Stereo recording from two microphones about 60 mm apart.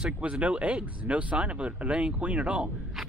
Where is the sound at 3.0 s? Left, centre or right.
Centre.